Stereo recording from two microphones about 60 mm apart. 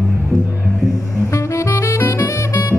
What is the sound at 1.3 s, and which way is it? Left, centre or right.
Saxophone, left.